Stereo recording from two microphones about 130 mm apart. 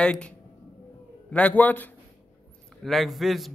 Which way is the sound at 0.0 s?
5° left (ahead or behind).